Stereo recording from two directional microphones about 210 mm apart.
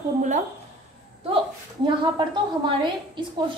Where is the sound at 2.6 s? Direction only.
20° right (ahead or behind).